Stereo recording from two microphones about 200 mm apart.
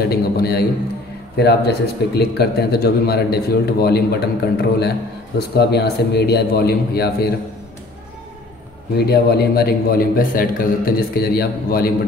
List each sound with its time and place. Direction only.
0.0 s a man's voice: 50° left (ahead or behind)
8.9 s a man's voice: 55° left (ahead or behind)